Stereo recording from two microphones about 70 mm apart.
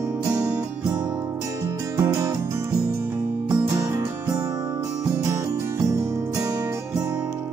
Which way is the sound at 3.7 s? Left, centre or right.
Right.